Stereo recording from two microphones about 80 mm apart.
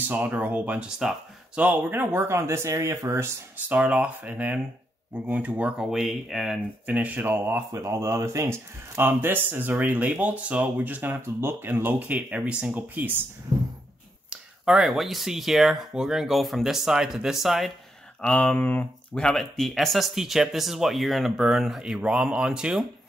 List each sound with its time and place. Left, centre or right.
0.0 s speech: centre; by 3.0 s right
3.6 s speech: centre
5.8 s speech: centre
6.9 s speech: centre
14.3 s speech: centre
18.2 s speech: centre
19.1 s speech: centre